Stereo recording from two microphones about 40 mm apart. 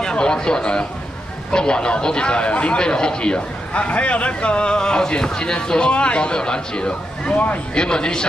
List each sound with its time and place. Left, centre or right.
0.0 s a man's voice: left
7.3 s speech: left
7.7 s a man's voice: left